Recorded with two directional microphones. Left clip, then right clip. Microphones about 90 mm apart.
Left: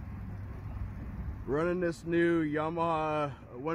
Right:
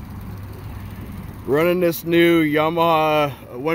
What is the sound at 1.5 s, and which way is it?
Speech, 5° right (ahead or behind).